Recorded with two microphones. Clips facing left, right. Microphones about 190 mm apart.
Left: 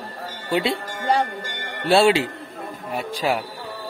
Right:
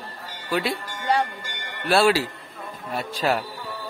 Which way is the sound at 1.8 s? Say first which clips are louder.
Left 3 dB; 25° left (ahead or behind).